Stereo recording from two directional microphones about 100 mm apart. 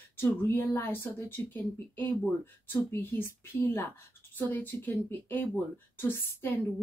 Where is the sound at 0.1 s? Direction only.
20° left (ahead or behind).